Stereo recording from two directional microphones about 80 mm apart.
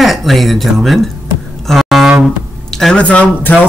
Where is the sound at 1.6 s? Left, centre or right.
Centre.